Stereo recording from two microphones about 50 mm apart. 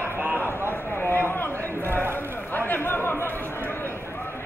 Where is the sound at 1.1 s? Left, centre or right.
Left.